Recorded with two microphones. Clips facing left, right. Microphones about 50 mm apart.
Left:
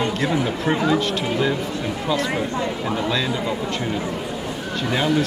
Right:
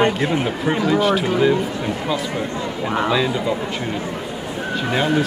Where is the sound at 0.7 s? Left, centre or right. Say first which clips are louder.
Right 4 dB; centre.